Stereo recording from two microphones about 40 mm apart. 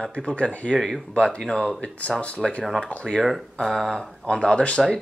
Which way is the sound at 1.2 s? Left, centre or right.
Left.